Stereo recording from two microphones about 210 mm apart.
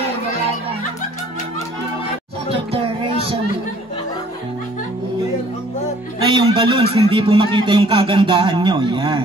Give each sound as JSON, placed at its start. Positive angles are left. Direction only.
{"t": 2.5, "sound": "child singing", "side_deg": -25}
{"t": 6.2, "sound": "speech", "side_deg": -25}